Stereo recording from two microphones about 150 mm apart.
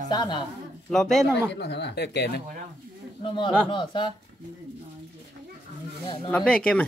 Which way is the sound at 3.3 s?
30° left (ahead or behind).